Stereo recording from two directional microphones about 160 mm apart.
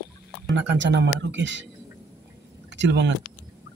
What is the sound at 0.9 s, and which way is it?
Speech, 90° right.